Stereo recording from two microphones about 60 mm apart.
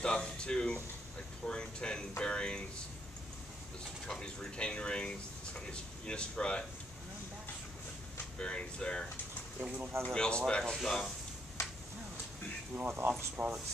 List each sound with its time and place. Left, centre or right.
0.0 s speech: centre
1.5 s a sound: centre
4.1 s speech: centre
8.4 s speech: centre
10.0 s speech: centre
12.7 s speech: right
13.4 s speech: right